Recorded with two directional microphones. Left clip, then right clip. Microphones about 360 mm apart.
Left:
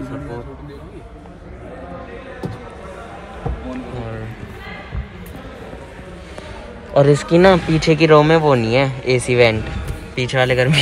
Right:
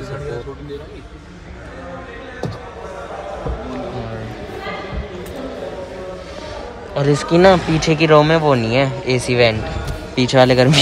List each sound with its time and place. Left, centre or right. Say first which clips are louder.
6.9 s a man's voice: left 4 dB; centre